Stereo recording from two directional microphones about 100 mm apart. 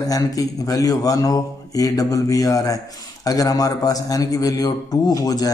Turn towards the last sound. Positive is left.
turn(degrees=40)  # may be behind; listen again after turning